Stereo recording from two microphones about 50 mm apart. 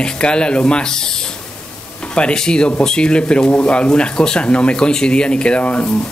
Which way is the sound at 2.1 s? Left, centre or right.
Centre.